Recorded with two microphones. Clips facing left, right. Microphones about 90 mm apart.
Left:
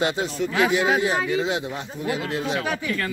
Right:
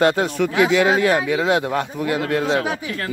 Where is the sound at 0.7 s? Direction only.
85° right; by 2.5 s 60° right (ahead or behind).